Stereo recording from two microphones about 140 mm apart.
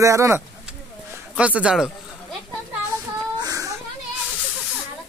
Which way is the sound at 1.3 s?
10° right (ahead or behind).